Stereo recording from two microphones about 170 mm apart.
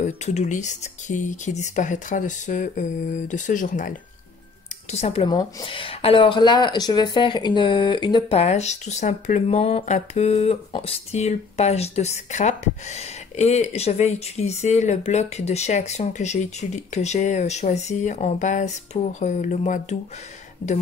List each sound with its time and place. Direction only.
0.0 s speech: 40° left (ahead or behind)
4.9 s speech: 35° left (ahead or behind)